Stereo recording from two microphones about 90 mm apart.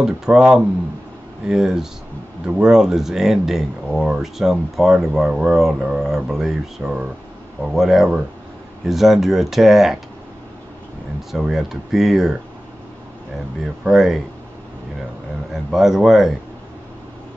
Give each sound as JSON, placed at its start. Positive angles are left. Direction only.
{"t": 0.0, "sound": "speech", "side_deg": -5}
{"t": 11.3, "sound": "speech", "side_deg": -5}
{"t": 13.8, "sound": "speech", "side_deg": -5}
{"t": 15.5, "sound": "speech", "side_deg": -5}